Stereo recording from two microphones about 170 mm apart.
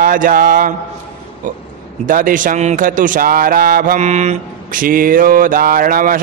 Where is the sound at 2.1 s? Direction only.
55° right (ahead or behind).